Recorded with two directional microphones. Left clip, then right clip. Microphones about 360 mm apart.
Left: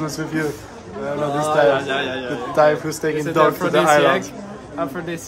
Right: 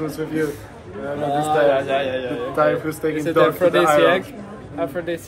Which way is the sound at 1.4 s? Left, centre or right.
Centre.